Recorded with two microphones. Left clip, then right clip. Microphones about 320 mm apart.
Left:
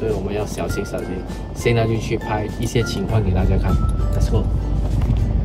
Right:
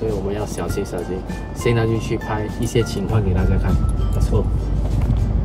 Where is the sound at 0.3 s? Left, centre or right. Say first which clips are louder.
Left 1 dB; right.